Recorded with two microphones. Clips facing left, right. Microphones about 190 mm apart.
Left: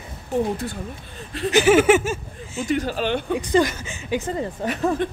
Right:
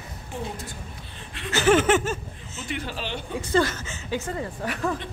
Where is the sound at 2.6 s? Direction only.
40° left (ahead or behind).